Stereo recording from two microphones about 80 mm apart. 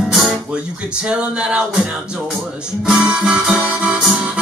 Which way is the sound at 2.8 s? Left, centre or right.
Centre.